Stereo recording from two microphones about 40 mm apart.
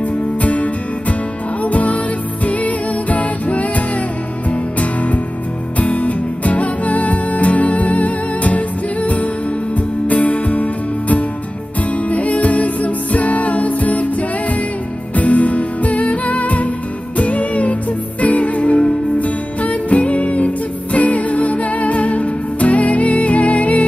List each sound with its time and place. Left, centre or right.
0.4 s music: left
15.1 s music: left